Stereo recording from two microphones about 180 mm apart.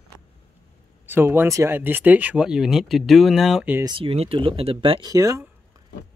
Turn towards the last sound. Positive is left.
turn(degrees=-20)  # may be behind; listen again after turning